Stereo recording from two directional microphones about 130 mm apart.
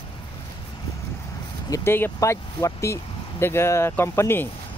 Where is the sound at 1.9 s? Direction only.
20° left (ahead or behind).